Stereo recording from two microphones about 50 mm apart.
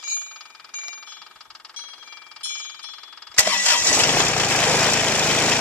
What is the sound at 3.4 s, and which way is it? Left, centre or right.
Engine starting, left.